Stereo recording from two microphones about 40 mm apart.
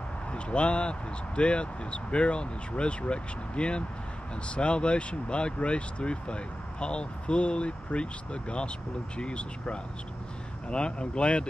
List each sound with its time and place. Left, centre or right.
0.3 s speech: left